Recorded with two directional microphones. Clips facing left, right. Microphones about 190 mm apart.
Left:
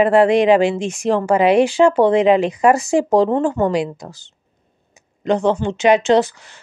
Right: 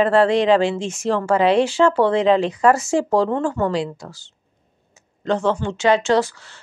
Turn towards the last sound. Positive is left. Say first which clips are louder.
# left 4 dB
turn(degrees=15)  # may be behind; listen again after turning